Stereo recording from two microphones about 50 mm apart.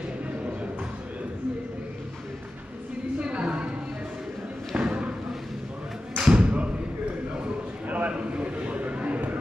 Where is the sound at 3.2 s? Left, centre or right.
Right.